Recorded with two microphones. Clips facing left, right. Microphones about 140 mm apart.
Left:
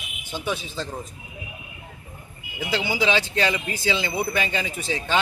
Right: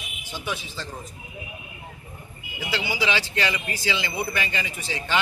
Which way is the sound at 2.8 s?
20° left (ahead or behind).